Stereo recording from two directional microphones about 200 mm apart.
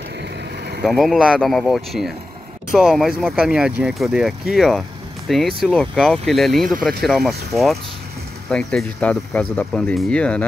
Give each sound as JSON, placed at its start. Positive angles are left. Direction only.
{"t": 0.8, "sound": "speech", "side_deg": 0}